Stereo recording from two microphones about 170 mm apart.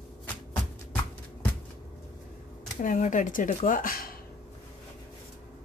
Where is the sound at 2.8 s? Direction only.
50° left (ahead or behind).